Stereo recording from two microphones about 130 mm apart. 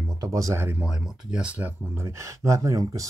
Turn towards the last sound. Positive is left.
turn(degrees=-25)  # may be behind; listen again after turning